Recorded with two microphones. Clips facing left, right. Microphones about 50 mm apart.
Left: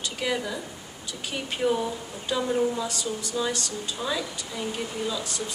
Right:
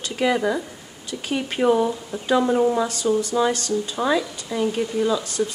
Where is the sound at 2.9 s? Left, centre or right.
Right.